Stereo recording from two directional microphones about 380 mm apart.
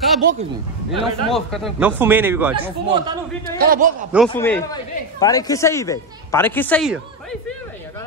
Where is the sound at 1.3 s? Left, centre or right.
Centre; by 4.1 s right.